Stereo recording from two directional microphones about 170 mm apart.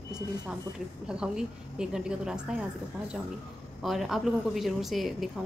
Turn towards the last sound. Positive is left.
turn(degrees=0)  # may be behind; listen again after turning